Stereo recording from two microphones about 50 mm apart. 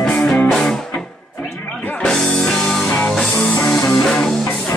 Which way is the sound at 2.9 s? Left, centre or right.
Left.